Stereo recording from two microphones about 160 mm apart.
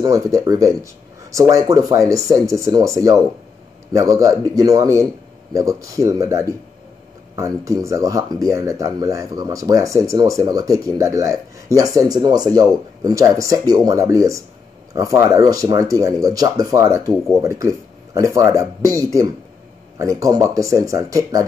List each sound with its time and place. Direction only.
0.0 s speech: 20° right (ahead or behind)